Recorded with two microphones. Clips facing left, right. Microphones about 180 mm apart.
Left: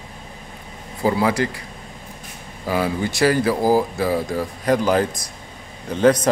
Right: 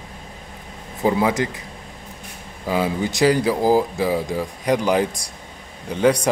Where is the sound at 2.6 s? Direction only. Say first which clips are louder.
Even; 15° right (ahead or behind).